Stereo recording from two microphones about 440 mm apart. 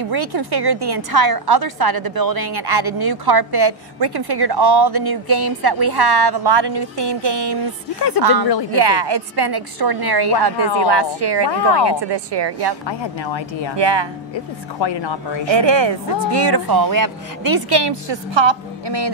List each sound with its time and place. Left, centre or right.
0.1 s a woman's voice: right
12.8 s speech: left
13.7 s speech: right
14.3 s speech: left
15.5 s a woman's voice: right